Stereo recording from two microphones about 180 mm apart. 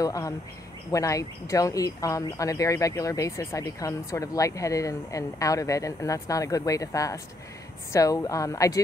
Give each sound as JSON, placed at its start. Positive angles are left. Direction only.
{"t": 0.0, "sound": "speech", "side_deg": 20}